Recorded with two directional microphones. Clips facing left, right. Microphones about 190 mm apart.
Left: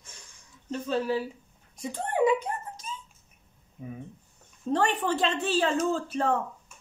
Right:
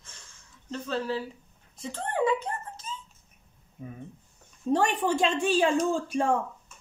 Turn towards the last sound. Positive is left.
turn(degrees=-10)  # may be behind; listen again after turning